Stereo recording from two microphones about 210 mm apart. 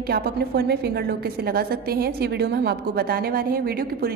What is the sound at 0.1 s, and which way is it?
A woman's voice, 50° right (ahead or behind).